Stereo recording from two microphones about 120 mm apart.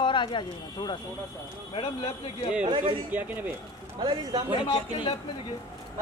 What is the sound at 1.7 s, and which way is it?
Speech, 55° left (ahead or behind).